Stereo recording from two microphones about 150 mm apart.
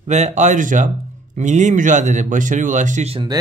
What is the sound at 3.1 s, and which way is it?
Speech, 30° right (ahead or behind).